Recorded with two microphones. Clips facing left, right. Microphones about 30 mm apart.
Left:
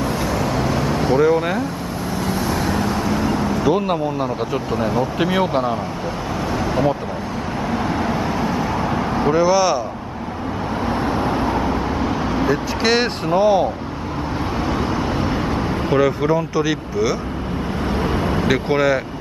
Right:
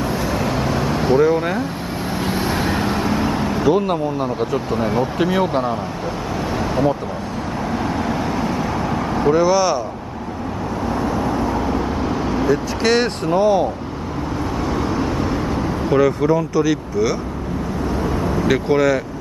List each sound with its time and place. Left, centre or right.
0.0 s vehicle: centre
2.2 s vehicle: right
3.6 s speech: centre
4.7 s speech: centre
5.2 s speech: centre
6.6 s vehicle: centre
10.9 s vehicle: left
11.6 s vehicle: centre
15.1 s vehicle: left
18.0 s vehicle: left
18.7 s speech: centre